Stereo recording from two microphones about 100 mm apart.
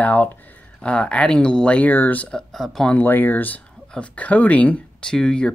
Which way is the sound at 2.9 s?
20° left (ahead or behind).